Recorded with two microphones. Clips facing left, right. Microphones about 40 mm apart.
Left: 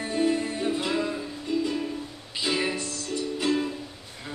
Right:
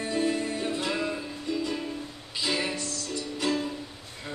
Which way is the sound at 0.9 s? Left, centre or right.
Centre.